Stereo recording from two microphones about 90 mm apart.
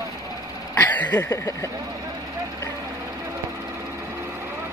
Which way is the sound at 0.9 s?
20° left (ahead or behind).